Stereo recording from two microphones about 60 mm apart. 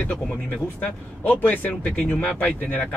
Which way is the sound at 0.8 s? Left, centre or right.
Left.